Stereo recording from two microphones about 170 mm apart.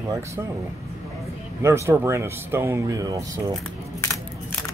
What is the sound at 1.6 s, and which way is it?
Speech, 15° right (ahead or behind).